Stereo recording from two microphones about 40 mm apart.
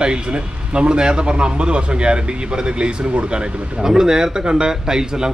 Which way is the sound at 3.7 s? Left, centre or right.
Centre.